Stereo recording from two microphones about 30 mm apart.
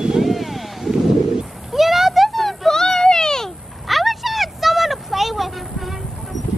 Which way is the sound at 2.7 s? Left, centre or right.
Centre.